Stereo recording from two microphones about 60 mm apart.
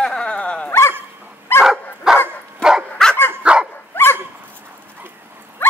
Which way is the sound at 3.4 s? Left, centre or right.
Centre.